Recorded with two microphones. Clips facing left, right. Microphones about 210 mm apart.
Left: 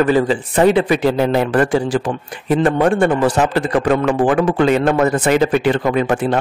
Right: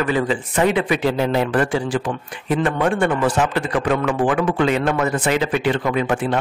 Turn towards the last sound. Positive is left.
turn(degrees=40)  # may be behind; listen again after turning